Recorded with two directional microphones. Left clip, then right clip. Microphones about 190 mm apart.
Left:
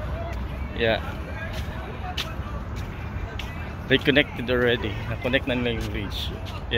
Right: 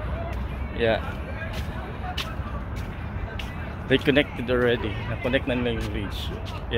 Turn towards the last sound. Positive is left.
turn(degrees=5)  # may be behind; listen again after turning